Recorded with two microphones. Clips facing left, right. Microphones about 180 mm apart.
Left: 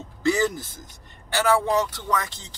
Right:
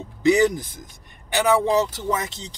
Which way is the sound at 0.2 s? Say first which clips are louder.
Right 5 dB; 15° right (ahead or behind).